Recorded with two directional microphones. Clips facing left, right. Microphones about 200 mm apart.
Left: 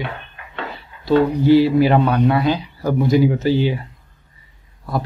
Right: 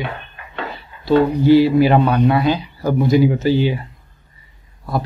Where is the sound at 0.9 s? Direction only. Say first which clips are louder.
Right 1 dB; 30° right (ahead or behind).